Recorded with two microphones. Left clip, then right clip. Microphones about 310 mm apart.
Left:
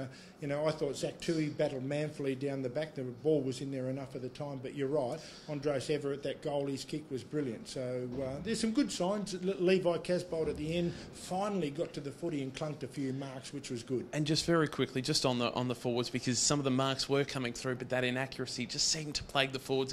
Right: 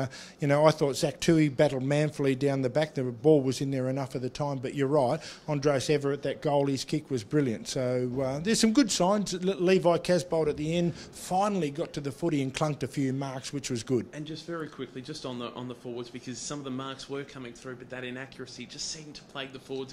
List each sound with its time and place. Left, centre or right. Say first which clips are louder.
0.0 s a man's voice: right 10 dB; right
14.1 s speech: left 7 dB; left